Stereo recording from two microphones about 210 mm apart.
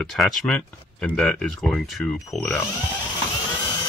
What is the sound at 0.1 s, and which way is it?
Speech, centre (ahead or behind).